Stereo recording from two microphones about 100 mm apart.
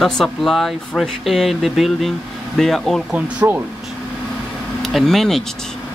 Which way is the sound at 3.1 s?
15° right (ahead or behind).